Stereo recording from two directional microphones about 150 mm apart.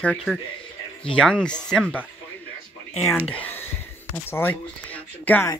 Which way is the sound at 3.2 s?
10° left (ahead or behind).